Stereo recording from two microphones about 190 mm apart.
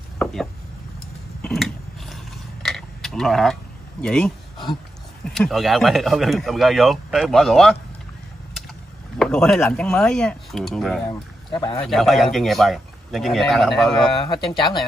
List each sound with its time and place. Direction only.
0.2 s a sound: centre (ahead or behind)
4.0 s speech: 5° left (ahead or behind)
5.3 s speech: centre (ahead or behind)
9.2 s speech: 5° left (ahead or behind)
11.1 s speech: 20° left (ahead or behind)
11.8 s speech: centre (ahead or behind)
14.2 s speech: 25° left (ahead or behind)